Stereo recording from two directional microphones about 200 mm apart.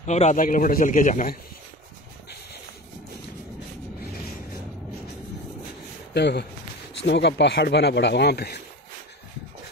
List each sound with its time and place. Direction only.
0.0 s speech: 35° left (ahead or behind)
6.1 s speech: 55° left (ahead or behind)